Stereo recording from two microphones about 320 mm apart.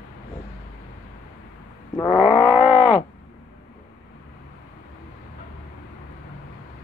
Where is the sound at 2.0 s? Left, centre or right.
Centre.